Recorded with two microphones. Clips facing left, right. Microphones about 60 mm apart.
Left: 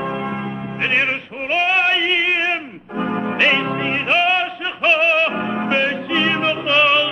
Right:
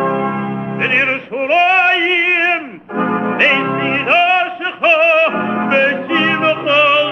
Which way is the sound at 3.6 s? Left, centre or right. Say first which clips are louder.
Right 5 dB; centre.